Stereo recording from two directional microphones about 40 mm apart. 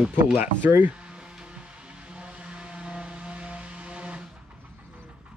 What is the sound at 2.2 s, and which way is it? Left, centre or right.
Vehicle, right.